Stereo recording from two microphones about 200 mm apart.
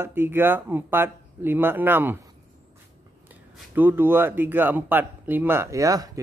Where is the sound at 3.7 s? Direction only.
10° right (ahead or behind).